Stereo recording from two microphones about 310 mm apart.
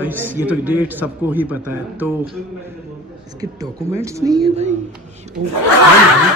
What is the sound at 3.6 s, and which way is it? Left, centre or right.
Speech, centre.